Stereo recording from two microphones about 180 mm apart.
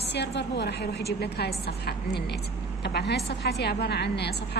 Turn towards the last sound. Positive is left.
turn(degrees=65)  # may be behind; listen again after turning